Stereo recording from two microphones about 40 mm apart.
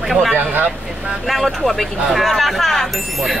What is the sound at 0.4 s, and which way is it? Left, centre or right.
Speech, right.